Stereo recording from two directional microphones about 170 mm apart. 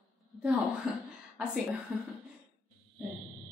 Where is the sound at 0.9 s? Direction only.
5° right (ahead or behind).